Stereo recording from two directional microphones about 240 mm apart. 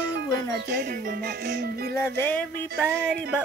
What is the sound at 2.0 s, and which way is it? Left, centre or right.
Speech, centre.